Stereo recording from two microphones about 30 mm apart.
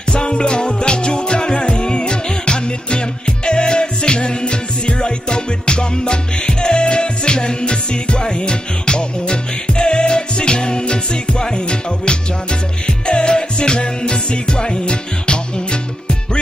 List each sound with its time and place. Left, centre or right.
0.1 s music: left